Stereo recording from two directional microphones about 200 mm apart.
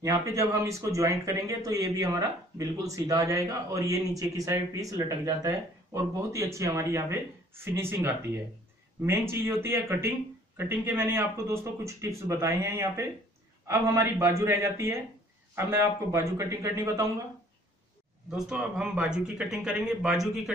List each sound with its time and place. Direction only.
0.0 s speech: 15° right (ahead or behind)
18.3 s speech: 5° right (ahead or behind)